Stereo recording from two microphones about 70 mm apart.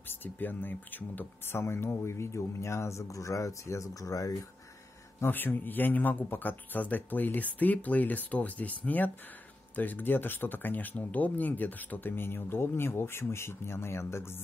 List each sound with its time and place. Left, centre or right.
0.2 s speech: left
1.6 s speech: left
5.2 s speech: left